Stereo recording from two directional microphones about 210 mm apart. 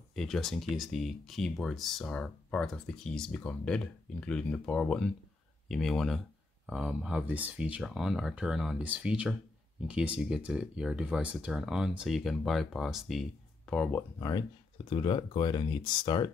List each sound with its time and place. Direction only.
0.1 s speech: centre (ahead or behind)
14.9 s speech: 25° left (ahead or behind)